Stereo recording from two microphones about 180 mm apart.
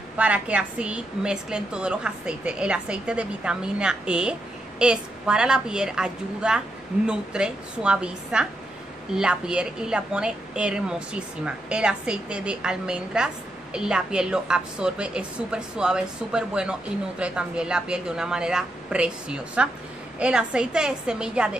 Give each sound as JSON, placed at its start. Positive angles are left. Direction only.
{"t": 0.2, "sound": "a woman's voice", "side_deg": -5}